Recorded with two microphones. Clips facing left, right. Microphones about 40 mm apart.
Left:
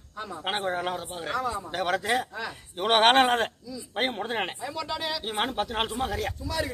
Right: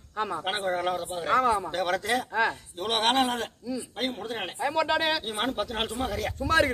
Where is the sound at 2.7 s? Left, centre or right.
Left.